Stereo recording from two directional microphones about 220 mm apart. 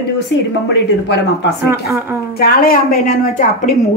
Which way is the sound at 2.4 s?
40° left (ahead or behind).